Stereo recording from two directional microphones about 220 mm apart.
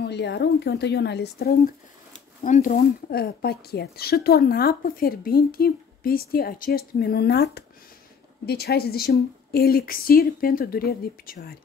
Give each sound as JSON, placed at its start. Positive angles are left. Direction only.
{"t": 0.0, "sound": "speech", "side_deg": 50}
{"t": 2.4, "sound": "speech", "side_deg": 35}